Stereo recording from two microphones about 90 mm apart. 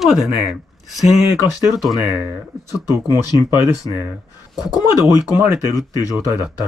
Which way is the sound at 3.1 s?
50° left (ahead or behind).